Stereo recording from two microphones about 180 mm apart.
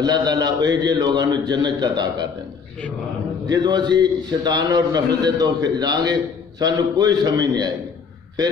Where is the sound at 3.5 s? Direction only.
25° right (ahead or behind).